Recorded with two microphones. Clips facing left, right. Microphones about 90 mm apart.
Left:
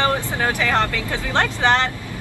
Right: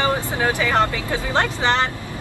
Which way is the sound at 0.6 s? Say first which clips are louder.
Right 1 dB; 15° right (ahead or behind).